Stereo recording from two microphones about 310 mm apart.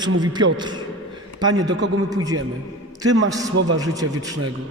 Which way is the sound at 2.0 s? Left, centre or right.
Centre.